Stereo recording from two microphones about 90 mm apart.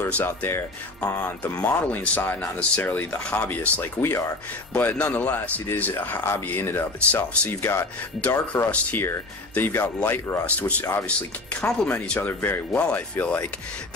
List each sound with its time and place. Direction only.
0.0 s speech: 20° left (ahead or behind)
11.1 s speech: 10° left (ahead or behind)
12.7 s speech: 15° left (ahead or behind)